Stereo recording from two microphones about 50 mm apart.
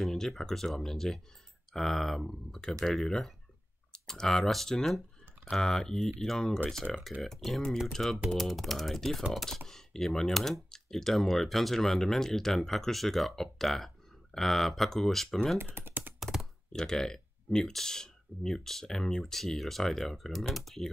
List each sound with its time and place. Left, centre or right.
0.0 s speech: centre
15.6 s typing: right
16.2 s computer keyboard: centre
16.7 s speech: centre